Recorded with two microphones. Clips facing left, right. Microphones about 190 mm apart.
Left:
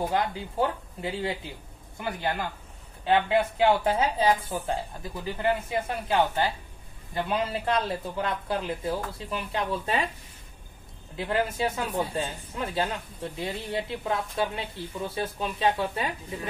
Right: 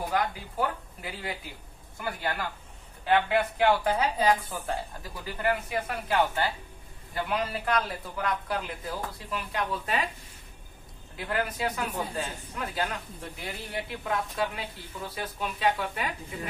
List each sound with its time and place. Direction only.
0.1 s speech: 25° left (ahead or behind)
11.1 s speech: 25° left (ahead or behind)